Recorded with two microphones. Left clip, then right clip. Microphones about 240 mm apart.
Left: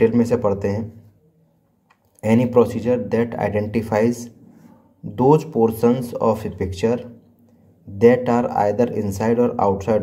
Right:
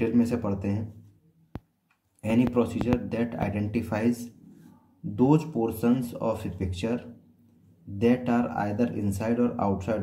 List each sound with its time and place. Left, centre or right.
0.0 s speech: centre
2.1 s speech: left
8.0 s speech: left